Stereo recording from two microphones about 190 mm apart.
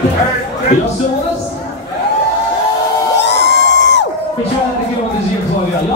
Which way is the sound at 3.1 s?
65° left (ahead or behind).